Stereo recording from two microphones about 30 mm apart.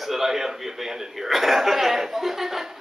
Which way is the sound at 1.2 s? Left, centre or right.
Centre.